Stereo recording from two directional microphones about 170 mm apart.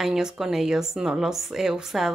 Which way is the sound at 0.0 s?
5° right (ahead or behind).